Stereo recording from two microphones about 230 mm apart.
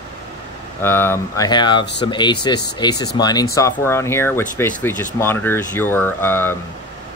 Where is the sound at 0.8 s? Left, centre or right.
Centre.